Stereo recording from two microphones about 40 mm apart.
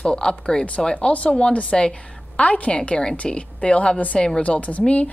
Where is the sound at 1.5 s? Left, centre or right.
Left.